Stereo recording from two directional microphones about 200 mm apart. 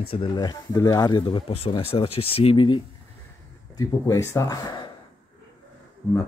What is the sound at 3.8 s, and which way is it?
Speech, 15° left (ahead or behind).